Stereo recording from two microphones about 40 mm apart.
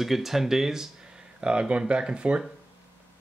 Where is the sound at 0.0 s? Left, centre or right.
Centre.